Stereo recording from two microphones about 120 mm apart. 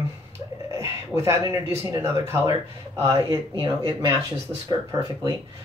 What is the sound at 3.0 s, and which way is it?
Speech, 25° right (ahead or behind).